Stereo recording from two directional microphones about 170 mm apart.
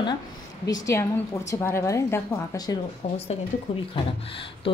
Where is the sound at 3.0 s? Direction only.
40° left (ahead or behind).